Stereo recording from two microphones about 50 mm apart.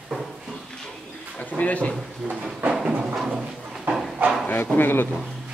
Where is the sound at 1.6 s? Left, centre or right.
Left.